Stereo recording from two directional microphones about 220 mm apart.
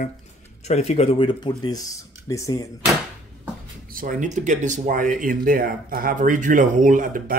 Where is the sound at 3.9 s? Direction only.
40° right (ahead or behind).